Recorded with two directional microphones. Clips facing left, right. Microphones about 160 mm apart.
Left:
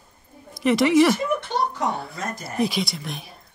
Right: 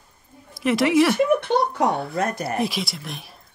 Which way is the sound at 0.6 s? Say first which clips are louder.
Left 1 dB; centre (ahead or behind).